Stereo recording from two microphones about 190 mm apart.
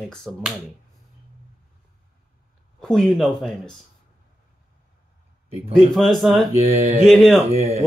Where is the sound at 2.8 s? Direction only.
5° left (ahead or behind).